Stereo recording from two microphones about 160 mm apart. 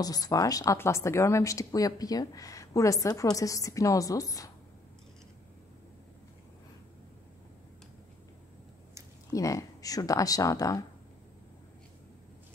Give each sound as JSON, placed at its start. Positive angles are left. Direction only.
{"t": 0.0, "sound": "speech", "side_deg": 25}
{"t": 9.3, "sound": "speech", "side_deg": 20}